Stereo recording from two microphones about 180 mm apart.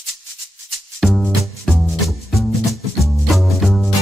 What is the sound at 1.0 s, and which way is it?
Music, centre (ahead or behind).